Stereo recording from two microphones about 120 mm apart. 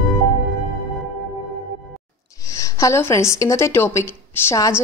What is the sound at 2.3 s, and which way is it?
A woman's voice, 25° left (ahead or behind).